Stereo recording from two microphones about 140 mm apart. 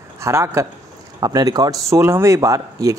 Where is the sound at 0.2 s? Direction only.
20° right (ahead or behind).